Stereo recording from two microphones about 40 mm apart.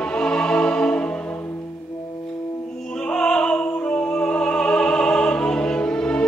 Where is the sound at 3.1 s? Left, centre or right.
Left.